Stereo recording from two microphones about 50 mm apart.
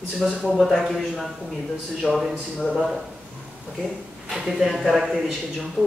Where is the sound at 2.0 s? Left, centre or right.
Centre.